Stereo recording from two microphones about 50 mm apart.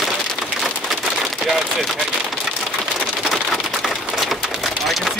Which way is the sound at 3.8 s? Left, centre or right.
Centre.